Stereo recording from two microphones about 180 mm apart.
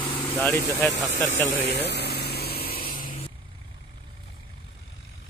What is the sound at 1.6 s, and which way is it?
Engine, 70° left (ahead or behind).